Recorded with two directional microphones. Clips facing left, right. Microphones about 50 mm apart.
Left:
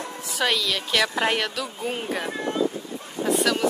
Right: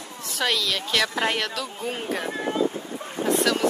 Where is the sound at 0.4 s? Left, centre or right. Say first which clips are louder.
Left 1 dB; centre.